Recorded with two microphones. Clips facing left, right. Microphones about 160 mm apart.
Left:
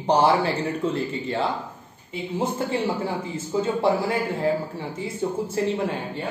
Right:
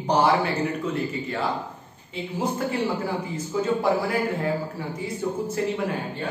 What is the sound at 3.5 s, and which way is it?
Speech, 25° left (ahead or behind).